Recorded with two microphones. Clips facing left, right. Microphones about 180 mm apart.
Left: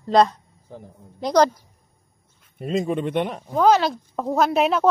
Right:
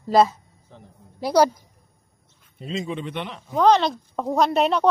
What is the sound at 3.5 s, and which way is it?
Speech, 5° left (ahead or behind).